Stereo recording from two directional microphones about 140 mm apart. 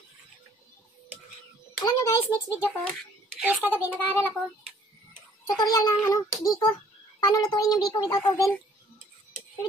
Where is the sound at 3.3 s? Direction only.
10° right (ahead or behind).